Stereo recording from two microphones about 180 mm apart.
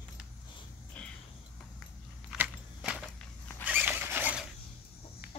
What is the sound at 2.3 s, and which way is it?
Biting, 5° right (ahead or behind).